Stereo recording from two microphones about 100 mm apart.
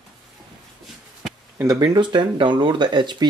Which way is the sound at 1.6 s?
40° right (ahead or behind).